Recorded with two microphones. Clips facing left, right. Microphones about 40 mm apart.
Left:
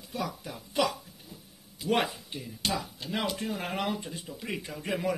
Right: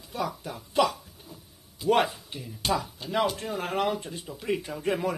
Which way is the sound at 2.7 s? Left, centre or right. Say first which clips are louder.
Right 5 dB; centre.